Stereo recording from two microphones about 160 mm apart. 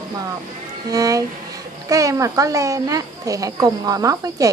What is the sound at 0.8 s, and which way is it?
A child's voice, 20° right (ahead or behind).